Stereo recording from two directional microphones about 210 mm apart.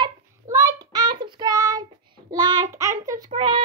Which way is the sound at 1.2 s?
20° right (ahead or behind).